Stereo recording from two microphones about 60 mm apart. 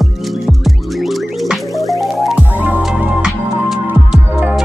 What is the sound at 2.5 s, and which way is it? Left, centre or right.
Music, right.